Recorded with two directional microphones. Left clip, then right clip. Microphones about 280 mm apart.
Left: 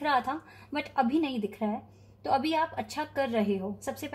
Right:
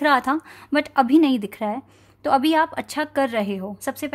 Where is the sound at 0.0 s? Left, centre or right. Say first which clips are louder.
Right 9 dB; right.